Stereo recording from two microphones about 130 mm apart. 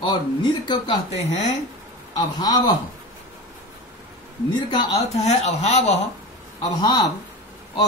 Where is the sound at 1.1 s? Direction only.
55° left (ahead or behind).